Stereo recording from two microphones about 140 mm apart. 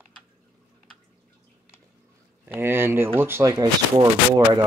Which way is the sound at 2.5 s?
15° right (ahead or behind).